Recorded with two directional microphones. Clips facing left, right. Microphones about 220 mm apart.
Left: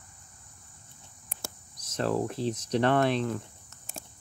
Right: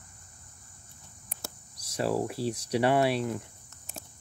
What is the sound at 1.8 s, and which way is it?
Speech, 10° right (ahead or behind).